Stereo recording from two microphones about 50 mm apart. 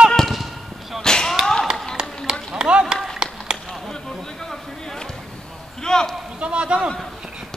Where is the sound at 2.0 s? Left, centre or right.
Centre.